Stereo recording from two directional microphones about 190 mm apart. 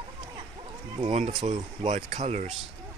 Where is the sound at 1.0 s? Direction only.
35° right (ahead or behind).